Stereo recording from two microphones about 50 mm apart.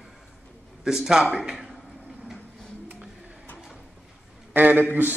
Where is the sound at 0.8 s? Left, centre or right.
Centre.